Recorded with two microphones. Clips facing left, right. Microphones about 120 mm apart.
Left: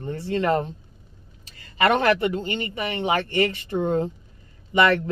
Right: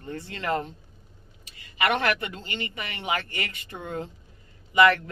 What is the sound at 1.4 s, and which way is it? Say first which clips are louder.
Speech: left 5 dB; 40° left (ahead or behind).